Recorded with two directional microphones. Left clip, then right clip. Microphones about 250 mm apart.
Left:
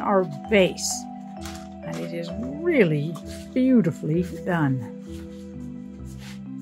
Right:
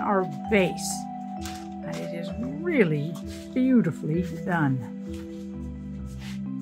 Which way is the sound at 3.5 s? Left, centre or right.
Centre.